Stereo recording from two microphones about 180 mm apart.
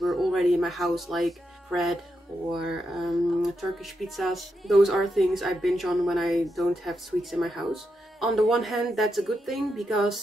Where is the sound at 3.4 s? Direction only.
Centre (ahead or behind).